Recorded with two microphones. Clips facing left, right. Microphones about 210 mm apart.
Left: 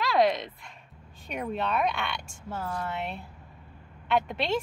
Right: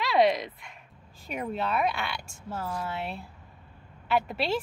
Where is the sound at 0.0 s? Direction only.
Centre (ahead or behind).